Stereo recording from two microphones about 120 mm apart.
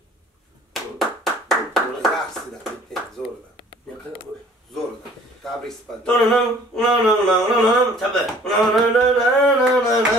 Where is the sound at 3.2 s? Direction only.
40° left (ahead or behind).